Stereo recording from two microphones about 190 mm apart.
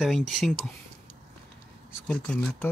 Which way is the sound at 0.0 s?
Centre (ahead or behind).